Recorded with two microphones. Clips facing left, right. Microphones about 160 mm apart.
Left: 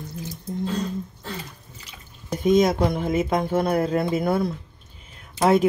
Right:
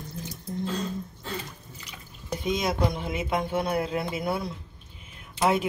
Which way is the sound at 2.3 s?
45° left (ahead or behind).